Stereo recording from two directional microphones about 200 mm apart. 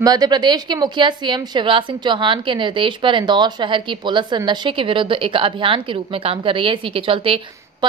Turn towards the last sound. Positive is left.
turn(degrees=-25)  # may be behind; listen again after turning